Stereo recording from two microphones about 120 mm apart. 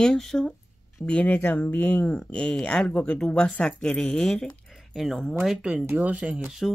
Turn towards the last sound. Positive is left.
turn(degrees=0)  # may be behind; listen again after turning